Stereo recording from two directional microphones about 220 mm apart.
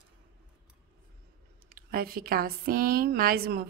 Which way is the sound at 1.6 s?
40° right (ahead or behind).